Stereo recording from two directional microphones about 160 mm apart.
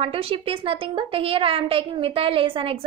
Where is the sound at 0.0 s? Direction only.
35° right (ahead or behind).